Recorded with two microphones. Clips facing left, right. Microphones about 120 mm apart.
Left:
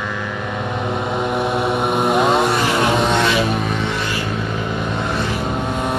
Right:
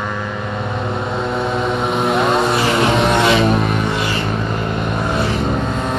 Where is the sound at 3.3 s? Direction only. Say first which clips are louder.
Right 4 dB; 55° right (ahead or behind).